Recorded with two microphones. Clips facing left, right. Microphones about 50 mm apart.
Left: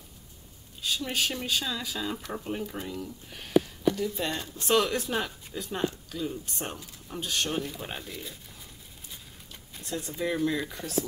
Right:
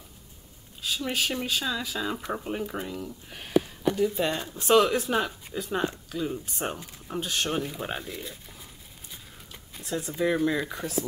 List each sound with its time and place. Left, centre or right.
0.8 s speech: centre
2.0 s speech: centre
6.1 s speech: right
7.2 s speech: centre